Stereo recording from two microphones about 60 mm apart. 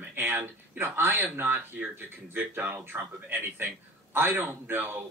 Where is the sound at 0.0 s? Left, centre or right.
Right.